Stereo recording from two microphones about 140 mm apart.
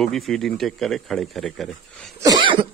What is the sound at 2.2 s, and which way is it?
Cough, 35° right (ahead or behind).